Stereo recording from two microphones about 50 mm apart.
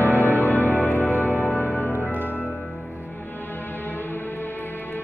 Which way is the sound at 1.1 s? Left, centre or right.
Right.